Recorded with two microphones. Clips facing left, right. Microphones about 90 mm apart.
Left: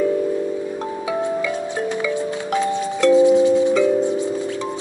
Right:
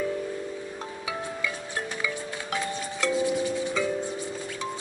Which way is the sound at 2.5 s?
20° left (ahead or behind).